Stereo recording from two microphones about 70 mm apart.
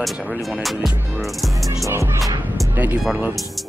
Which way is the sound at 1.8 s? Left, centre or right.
Right.